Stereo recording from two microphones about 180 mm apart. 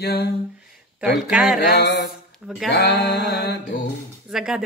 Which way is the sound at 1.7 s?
70° left (ahead or behind).